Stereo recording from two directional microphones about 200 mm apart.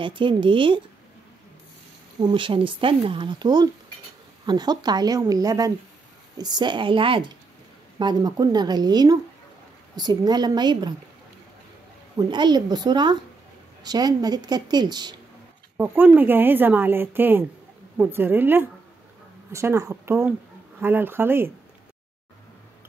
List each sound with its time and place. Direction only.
0.0 s speech: 25° right (ahead or behind)
2.1 s speech: 25° right (ahead or behind)
12.2 s speech: 20° right (ahead or behind)
15.8 s a woman's voice: 10° right (ahead or behind)